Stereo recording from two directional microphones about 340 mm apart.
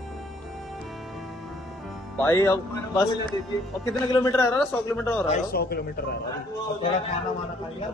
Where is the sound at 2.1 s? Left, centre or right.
Centre.